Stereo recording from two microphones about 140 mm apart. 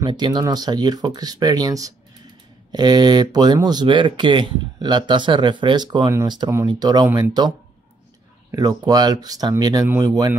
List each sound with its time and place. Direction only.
0.0 s speech: 35° right (ahead or behind)